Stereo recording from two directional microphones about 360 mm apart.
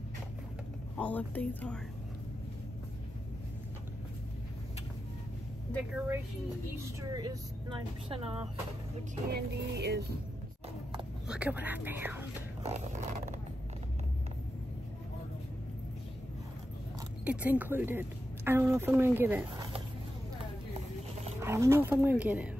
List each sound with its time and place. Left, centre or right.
0.9 s speech: centre
5.7 s a woman's voice: centre
9.3 s a sound: right
11.2 s speech: centre
12.6 s a sound: centre
17.2 s speech: centre
21.4 s speech: centre